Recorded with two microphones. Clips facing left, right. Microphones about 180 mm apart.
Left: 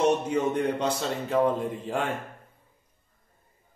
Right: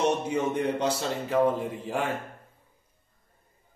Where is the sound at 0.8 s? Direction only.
5° right (ahead or behind).